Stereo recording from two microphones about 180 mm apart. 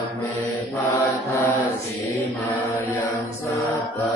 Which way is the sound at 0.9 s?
20° left (ahead or behind).